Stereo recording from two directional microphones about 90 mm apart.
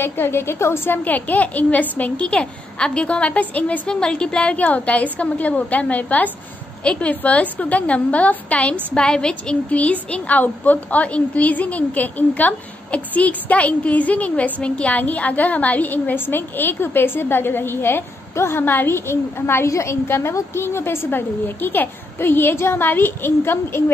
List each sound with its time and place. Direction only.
0.0 s a woman's voice: 25° left (ahead or behind)